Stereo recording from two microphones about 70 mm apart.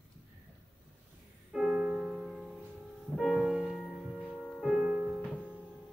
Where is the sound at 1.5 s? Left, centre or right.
Centre.